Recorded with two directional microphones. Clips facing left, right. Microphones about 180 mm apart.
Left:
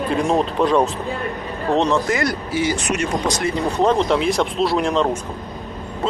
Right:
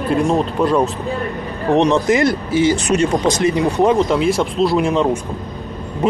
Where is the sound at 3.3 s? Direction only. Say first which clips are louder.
Right 5 dB; 15° right (ahead or behind).